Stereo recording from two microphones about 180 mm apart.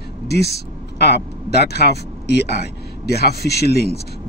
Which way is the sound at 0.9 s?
65° left (ahead or behind).